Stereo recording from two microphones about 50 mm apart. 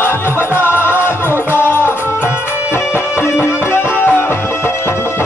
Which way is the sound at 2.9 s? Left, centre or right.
Left.